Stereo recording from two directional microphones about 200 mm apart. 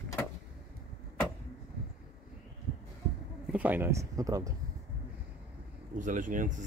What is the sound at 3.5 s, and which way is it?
Speech, 10° right (ahead or behind).